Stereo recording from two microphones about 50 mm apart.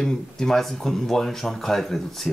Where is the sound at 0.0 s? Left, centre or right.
Centre.